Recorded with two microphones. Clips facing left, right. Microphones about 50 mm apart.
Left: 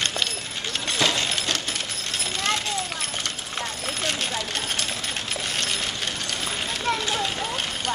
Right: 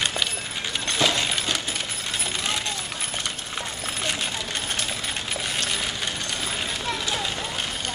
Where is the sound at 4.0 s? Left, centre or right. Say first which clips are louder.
Even; centre.